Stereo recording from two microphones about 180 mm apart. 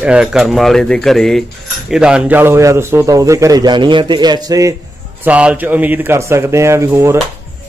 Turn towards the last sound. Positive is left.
turn(degrees=-15)  # may be behind; listen again after turning